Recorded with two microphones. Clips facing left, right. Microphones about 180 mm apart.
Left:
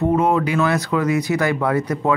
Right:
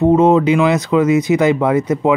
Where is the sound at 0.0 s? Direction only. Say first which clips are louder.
Right 7 dB; 25° right (ahead or behind).